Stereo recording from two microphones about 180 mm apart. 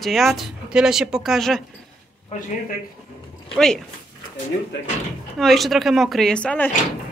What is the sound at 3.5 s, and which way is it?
Speech, 5° left (ahead or behind).